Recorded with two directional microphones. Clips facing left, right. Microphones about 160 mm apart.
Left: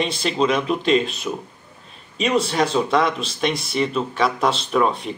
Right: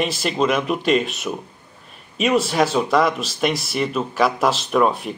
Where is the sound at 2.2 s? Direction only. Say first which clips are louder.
Right 2 dB; 5° right (ahead or behind).